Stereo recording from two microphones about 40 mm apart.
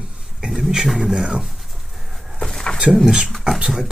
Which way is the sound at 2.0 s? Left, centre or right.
Centre.